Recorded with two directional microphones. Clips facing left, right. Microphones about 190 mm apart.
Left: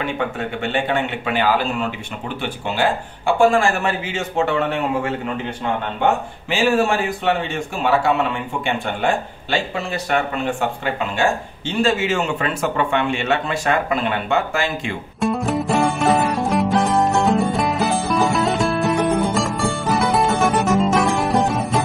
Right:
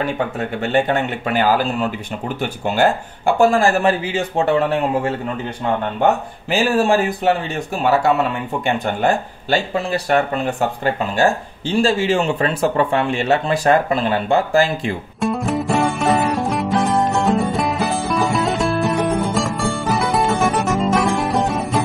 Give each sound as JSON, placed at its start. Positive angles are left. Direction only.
{"t": 0.6, "sound": "speech", "side_deg": -40}
{"t": 6.5, "sound": "speech", "side_deg": -35}
{"t": 15.1, "sound": "music", "side_deg": 0}